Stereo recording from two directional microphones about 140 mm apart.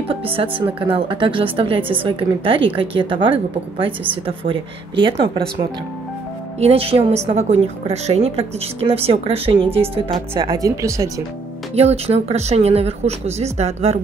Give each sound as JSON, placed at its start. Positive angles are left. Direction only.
{"t": 0.1, "sound": "a woman's voice", "side_deg": -40}
{"t": 10.4, "sound": "speech", "side_deg": -25}
{"t": 11.7, "sound": "a woman's voice", "side_deg": -45}